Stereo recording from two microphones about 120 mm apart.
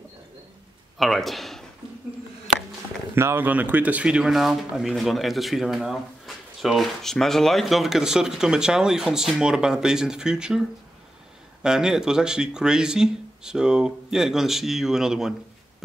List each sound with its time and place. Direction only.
0.9 s speech: centre (ahead or behind)
3.2 s speech: 20° right (ahead or behind)
11.6 s speech: 5° right (ahead or behind)